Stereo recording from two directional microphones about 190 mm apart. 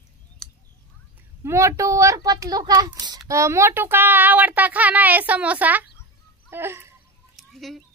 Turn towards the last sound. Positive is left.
turn(degrees=0)  # may be behind; listen again after turning